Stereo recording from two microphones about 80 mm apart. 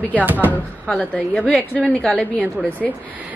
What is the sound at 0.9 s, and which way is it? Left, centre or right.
A woman's voice, centre.